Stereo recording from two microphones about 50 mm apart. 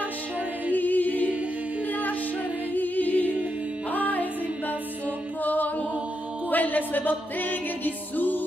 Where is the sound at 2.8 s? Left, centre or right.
Left.